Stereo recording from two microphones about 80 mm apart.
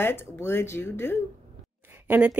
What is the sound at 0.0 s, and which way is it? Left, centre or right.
Speech, left.